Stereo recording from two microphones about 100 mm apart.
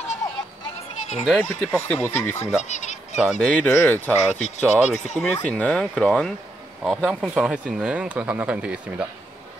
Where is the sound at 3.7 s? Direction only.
25° left (ahead or behind).